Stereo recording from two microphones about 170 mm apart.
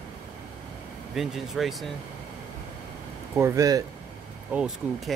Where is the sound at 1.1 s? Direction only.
Centre (ahead or behind).